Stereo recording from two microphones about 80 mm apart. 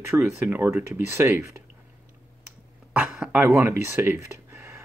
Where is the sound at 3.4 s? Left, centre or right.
Right.